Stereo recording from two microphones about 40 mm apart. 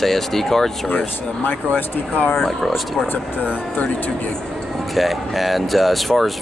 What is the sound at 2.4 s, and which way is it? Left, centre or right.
Speech, centre.